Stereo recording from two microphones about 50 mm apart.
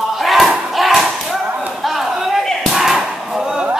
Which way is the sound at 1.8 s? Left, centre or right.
Centre.